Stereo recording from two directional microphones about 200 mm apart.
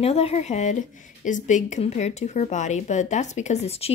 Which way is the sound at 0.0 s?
30° left (ahead or behind).